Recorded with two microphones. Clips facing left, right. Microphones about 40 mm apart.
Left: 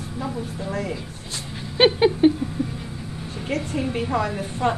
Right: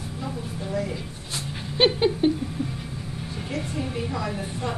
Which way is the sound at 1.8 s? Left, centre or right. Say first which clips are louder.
Left 4 dB; centre.